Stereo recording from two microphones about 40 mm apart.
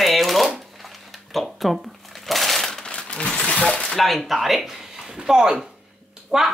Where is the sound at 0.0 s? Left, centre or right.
Centre.